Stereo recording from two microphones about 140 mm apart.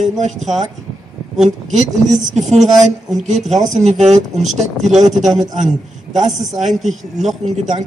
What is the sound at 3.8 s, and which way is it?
Speech, 55° right (ahead or behind).